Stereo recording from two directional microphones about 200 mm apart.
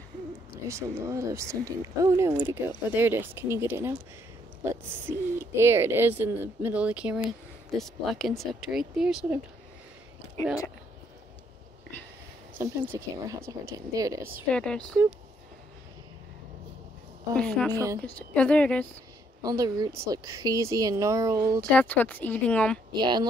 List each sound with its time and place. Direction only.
0.7 s speech: 15° right (ahead or behind)
12.5 s speech: 10° right (ahead or behind)
14.5 s speech: 5° left (ahead or behind)
17.3 s speech: 5° left (ahead or behind)
19.4 s speech: 20° right (ahead or behind)
21.5 s speech: 5° left (ahead or behind)
22.9 s speech: 20° right (ahead or behind)